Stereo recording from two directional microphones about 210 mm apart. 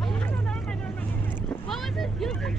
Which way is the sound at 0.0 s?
Centre (ahead or behind).